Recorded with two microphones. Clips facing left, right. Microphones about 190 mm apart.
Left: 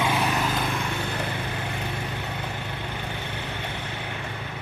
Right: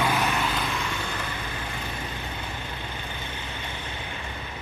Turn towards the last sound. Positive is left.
turn(degrees=65)  # may be behind; listen again after turning